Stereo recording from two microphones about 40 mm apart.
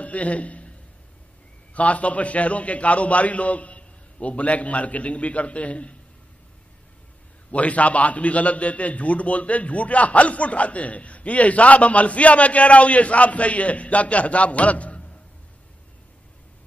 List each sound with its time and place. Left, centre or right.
0.0 s a sound: left
1.7 s a man's voice: left
7.5 s a man's voice: left